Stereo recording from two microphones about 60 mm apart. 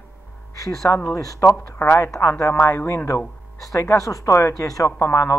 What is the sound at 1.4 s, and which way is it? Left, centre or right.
Speech, left.